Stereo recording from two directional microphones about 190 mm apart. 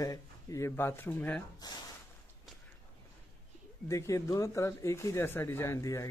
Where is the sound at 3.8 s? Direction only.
15° left (ahead or behind).